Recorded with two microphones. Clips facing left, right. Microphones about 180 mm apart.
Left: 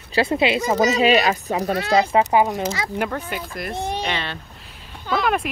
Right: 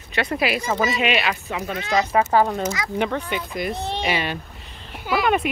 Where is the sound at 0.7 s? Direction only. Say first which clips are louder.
Left 8 dB; 40° left (ahead or behind).